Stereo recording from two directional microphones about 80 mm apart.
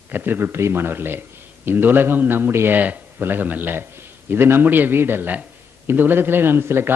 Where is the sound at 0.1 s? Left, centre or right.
Right.